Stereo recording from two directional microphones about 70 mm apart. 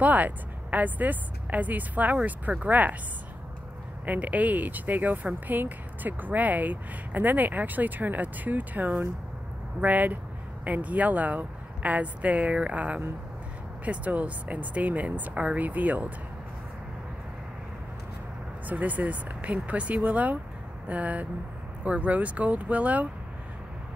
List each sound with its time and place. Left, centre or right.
0.0 s speech: right
4.0 s speech: right
18.7 s speech: right